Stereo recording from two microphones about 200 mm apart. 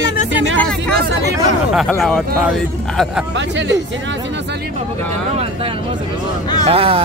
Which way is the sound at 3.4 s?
65° right (ahead or behind).